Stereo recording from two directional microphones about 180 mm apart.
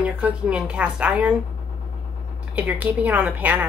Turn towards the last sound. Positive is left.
turn(degrees=-10)  # may be behind; listen again after turning